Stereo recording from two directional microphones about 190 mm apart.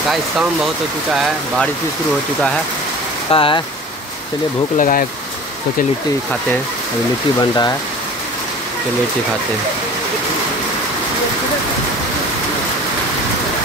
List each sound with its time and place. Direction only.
3.3 s speech: 25° left (ahead or behind)
4.7 s speech: 45° left (ahead or behind)
7.3 s speech: 20° left (ahead or behind)